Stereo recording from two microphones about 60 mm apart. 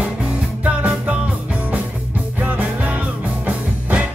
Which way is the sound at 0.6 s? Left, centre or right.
Right.